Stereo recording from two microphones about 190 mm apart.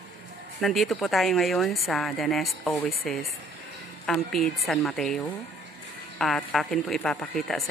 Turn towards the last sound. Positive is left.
turn(degrees=0)  # may be behind; listen again after turning